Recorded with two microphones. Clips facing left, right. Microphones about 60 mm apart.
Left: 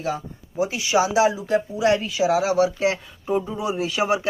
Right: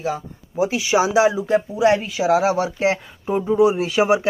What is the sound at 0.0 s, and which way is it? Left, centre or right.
Speech, centre.